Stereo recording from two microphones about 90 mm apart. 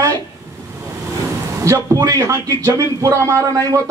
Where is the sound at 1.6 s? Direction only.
40° right (ahead or behind).